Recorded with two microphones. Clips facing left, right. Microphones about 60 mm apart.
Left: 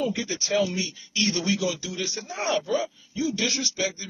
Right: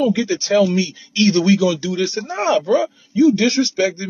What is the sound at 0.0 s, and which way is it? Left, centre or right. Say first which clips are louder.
A man's voice: right 10 dB; right.